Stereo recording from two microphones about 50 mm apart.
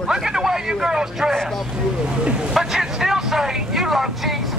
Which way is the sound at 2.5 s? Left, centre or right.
Centre.